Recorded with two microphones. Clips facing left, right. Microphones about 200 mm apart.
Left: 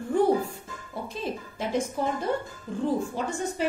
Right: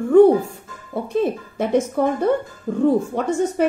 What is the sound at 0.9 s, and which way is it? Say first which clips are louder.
A woman's voice: right 12 dB; 65° right (ahead or behind).